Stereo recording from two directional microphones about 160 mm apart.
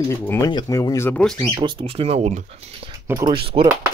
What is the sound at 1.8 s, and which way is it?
Speech, 40° right (ahead or behind).